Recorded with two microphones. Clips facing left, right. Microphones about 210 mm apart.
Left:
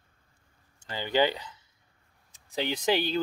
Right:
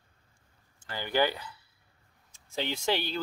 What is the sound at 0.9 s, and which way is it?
Speech, 20° left (ahead or behind).